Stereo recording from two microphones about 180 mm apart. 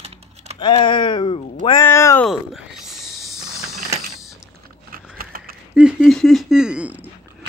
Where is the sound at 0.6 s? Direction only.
25° left (ahead or behind).